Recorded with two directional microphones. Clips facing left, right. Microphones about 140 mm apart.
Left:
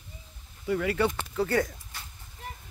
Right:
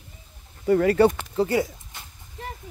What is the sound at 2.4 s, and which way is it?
Vehicle, 90° right.